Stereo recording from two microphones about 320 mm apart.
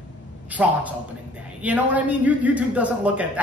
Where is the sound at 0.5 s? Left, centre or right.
Centre.